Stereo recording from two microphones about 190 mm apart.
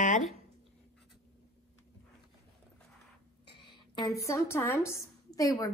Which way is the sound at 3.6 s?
25° left (ahead or behind).